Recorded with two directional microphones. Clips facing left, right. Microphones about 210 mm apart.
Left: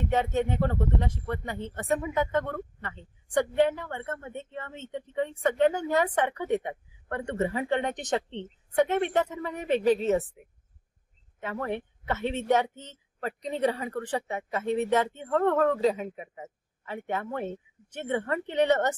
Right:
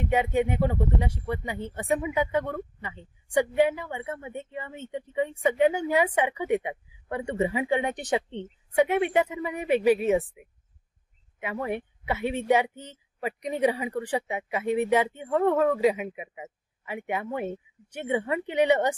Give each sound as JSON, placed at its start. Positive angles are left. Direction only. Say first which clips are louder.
{"t": 0.0, "sound": "speech", "louder": "right 2 dB", "side_deg": -10}